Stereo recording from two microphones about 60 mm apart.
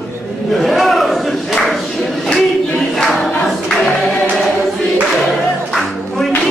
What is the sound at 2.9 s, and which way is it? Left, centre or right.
Choir, centre.